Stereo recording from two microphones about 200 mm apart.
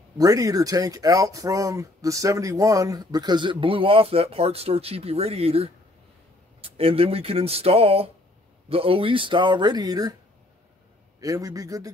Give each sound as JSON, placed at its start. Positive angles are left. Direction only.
{"t": 0.2, "sound": "speech", "side_deg": -15}
{"t": 11.1, "sound": "a man's voice", "side_deg": -15}